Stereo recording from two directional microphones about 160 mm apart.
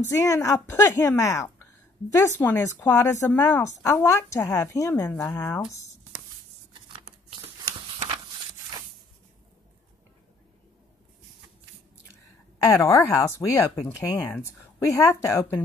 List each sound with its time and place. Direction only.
0.0 s speech: 20° left (ahead or behind)
12.6 s speech: 15° left (ahead or behind)